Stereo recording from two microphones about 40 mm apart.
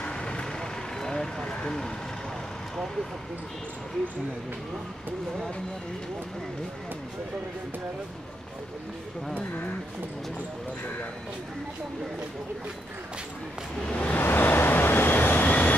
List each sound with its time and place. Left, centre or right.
0.0 s vehicle: left
13.8 s a sound: left
14.1 s vehicle: left